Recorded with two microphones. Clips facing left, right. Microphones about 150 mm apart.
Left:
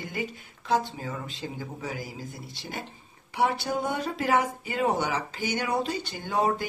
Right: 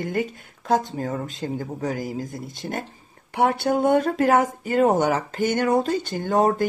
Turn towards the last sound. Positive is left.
turn(degrees=-45)  # may be behind; listen again after turning